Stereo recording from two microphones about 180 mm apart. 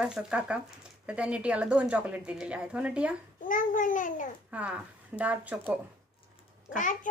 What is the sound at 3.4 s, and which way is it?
Speech, 50° left (ahead or behind).